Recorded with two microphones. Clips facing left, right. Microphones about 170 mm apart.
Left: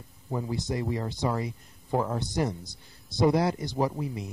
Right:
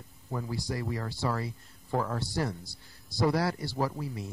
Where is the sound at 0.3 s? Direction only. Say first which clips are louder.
Left 4 dB; 20° left (ahead or behind).